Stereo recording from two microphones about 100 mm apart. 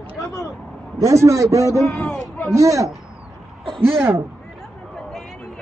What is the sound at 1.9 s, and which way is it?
Speech, centre (ahead or behind).